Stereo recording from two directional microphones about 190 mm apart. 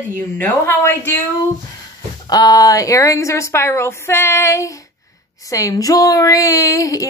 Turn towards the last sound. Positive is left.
turn(degrees=15)  # may be behind; listen again after turning